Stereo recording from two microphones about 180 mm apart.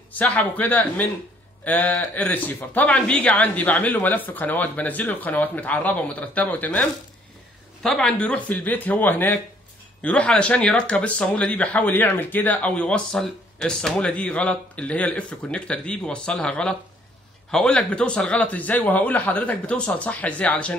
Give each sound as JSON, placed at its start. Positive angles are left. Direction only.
{"t": 0.1, "sound": "speech", "side_deg": 10}